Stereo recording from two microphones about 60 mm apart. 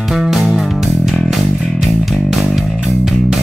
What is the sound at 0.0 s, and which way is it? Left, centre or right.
Music, centre.